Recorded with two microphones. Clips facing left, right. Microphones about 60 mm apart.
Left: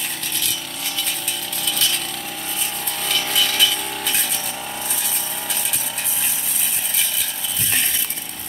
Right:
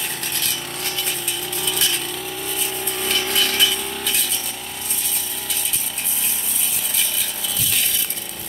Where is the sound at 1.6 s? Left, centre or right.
Centre.